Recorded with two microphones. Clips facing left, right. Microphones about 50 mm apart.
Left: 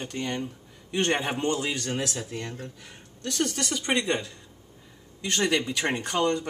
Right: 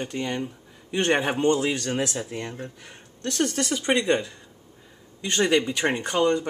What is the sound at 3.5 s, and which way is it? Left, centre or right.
Speech, right.